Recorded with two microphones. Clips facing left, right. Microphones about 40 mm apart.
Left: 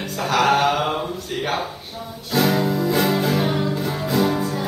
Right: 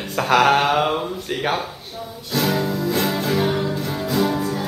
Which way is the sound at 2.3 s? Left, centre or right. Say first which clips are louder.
Left 2 dB; centre.